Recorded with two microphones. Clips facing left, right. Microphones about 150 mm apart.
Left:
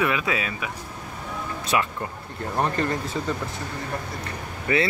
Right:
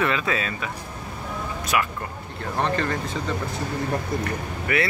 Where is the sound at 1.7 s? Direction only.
25° left (ahead or behind).